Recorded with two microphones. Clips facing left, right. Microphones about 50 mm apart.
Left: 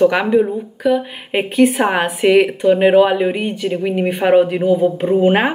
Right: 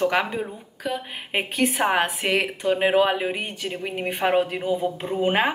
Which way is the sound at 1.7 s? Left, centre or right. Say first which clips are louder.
Left 6 dB; left.